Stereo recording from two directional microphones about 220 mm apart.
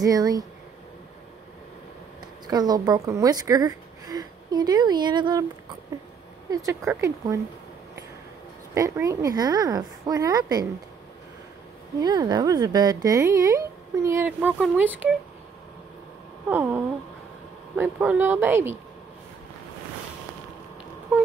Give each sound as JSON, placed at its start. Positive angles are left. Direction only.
{"t": 0.0, "sound": "speech", "side_deg": -15}
{"t": 2.4, "sound": "a woman's voice", "side_deg": -20}
{"t": 6.5, "sound": "speech", "side_deg": -15}
{"t": 8.7, "sound": "speech", "side_deg": -15}
{"t": 12.0, "sound": "speech", "side_deg": -20}
{"t": 16.4, "sound": "speech", "side_deg": -10}